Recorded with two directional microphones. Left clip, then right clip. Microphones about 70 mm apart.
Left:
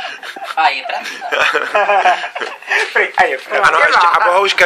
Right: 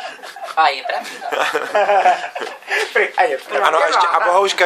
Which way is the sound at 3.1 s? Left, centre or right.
Centre.